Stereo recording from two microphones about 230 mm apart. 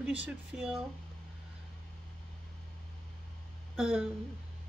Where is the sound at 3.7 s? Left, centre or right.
Centre.